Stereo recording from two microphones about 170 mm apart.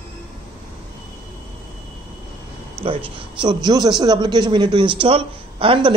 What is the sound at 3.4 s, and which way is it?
A man's voice, 25° right (ahead or behind).